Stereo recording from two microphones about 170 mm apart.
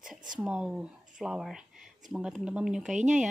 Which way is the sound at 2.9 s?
45° right (ahead or behind).